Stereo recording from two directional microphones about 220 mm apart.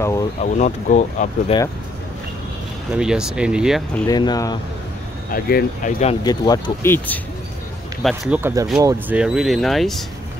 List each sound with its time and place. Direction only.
0.0 s speech: 15° left (ahead or behind)
0.4 s speech: 30° left (ahead or behind)
2.9 s speech: 5° right (ahead or behind)
4.1 s speech: 20° left (ahead or behind)
5.3 s speech: 40° left (ahead or behind)
6.2 s speech: 20° left (ahead or behind)
8.0 s speech: centre (ahead or behind)
8.4 s speech: 10° right (ahead or behind)